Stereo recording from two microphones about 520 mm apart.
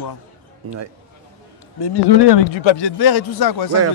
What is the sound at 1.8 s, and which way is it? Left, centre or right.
Speech, left.